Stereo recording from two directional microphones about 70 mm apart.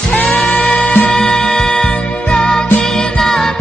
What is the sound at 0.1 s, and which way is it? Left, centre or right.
Music, left.